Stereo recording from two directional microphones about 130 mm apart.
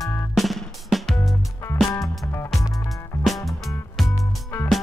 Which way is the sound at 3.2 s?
Centre (ahead or behind).